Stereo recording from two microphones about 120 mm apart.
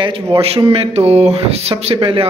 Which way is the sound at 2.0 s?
45° right (ahead or behind).